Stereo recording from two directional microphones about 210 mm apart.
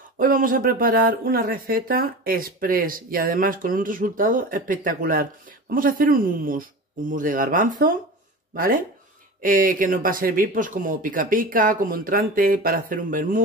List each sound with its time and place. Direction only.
0.2 s speech: 40° right (ahead or behind)